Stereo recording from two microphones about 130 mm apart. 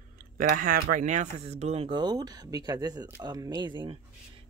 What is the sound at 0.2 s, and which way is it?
Speech, 90° right.